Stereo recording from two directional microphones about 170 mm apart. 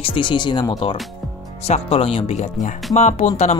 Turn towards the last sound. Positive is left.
turn(degrees=40)  # may be behind; listen again after turning